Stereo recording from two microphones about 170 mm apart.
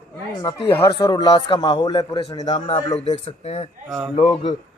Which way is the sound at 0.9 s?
25° left (ahead or behind).